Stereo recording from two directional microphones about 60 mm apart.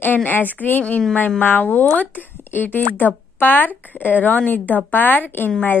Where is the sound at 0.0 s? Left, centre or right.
Left.